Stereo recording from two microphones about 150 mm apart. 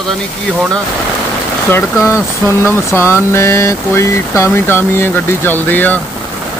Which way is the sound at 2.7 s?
15° left (ahead or behind).